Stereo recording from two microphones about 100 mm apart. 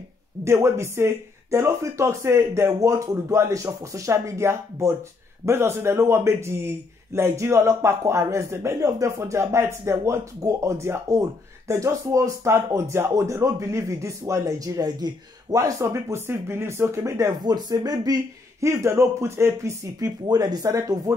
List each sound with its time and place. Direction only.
0.4 s speech: 25° right (ahead or behind)
17.4 s speech: 45° right (ahead or behind)
18.7 s speech: 25° right (ahead or behind)